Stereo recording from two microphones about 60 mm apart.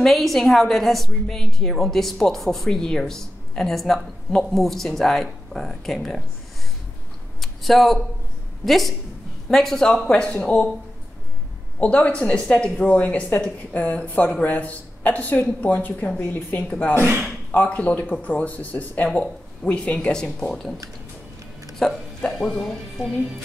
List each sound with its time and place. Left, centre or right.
0.0 s a woman's voice: centre
7.3 s a sound: centre
8.6 s a woman's voice: centre
11.8 s speech: centre
17.5 s speech: left; by 23.0 s centre